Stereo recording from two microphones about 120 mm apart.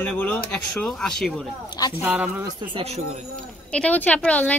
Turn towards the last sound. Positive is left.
turn(degrees=10)  # may be behind; listen again after turning